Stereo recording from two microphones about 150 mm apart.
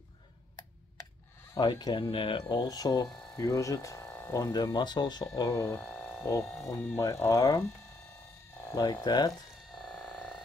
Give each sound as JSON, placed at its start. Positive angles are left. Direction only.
{"t": 1.5, "sound": "speech", "side_deg": 30}
{"t": 5.8, "sound": "hum", "side_deg": 5}
{"t": 6.6, "sound": "speech", "side_deg": 20}
{"t": 8.7, "sound": "speech", "side_deg": 25}
{"t": 9.8, "sound": "frog", "side_deg": 5}